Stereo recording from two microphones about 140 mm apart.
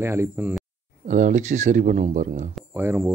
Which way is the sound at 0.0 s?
15° right (ahead or behind).